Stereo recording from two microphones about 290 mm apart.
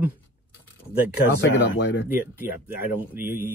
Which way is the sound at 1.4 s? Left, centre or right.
Left.